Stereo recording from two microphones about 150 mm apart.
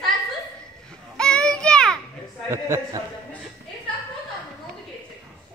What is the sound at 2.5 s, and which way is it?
Speech, 20° right (ahead or behind).